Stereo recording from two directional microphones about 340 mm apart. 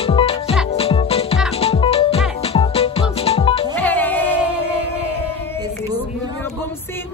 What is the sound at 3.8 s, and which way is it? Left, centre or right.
Music, centre.